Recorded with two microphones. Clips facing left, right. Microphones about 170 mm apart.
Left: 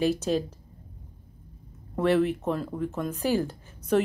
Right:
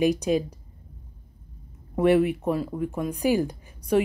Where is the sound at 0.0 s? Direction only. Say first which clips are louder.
Right 3 dB; 15° right (ahead or behind).